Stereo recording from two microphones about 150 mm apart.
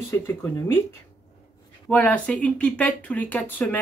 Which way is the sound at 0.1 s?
15° left (ahead or behind).